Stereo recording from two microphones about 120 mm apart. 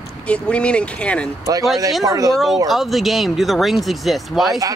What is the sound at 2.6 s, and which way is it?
Speech, centre (ahead or behind).